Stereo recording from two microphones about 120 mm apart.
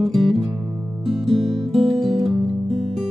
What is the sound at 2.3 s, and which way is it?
Music, 50° right (ahead or behind).